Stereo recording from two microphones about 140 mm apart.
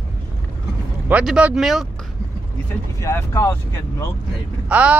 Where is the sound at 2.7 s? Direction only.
20° left (ahead or behind).